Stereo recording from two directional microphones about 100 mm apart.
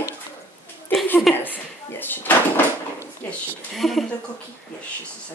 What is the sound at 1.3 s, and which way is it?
Speech, 20° left (ahead or behind).